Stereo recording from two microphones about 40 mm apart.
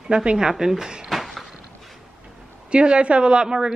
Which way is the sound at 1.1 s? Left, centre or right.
Centre.